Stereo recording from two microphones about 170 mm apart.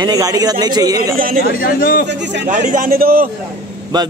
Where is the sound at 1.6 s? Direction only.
60° left (ahead or behind).